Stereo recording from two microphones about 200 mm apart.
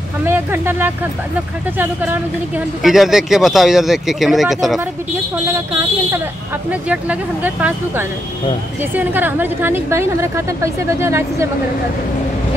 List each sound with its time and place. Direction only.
0.2 s speech: 10° right (ahead or behind)
2.8 s speech: centre (ahead or behind)
6.7 s a woman's voice: 5° right (ahead or behind)